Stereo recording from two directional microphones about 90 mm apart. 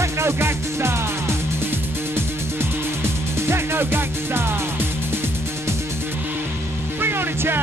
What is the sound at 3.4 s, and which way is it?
Music, 25° right (ahead or behind).